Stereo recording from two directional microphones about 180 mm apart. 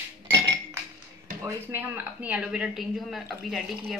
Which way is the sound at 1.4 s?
10° right (ahead or behind).